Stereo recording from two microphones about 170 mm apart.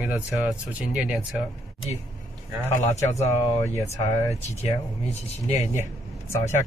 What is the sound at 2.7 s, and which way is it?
Speech, 40° left (ahead or behind).